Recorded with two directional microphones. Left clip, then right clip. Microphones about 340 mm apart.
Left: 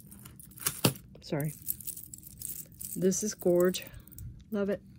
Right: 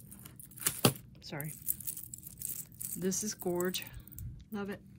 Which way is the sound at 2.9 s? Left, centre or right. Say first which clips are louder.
Left 7 dB; centre.